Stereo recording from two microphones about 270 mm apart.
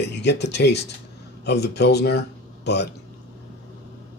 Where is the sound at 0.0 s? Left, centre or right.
Left.